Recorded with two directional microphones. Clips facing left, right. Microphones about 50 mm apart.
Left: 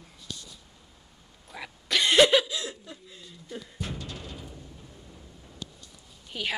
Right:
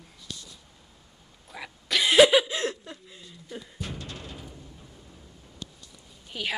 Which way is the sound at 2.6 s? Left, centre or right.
Right.